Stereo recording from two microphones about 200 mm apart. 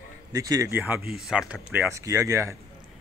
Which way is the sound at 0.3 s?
20° right (ahead or behind).